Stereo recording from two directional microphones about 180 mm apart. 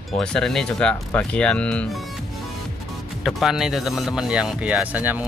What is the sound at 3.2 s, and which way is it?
Speech, centre (ahead or behind).